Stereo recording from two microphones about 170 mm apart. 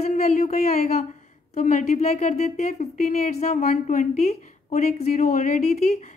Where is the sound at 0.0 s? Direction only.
45° left (ahead or behind).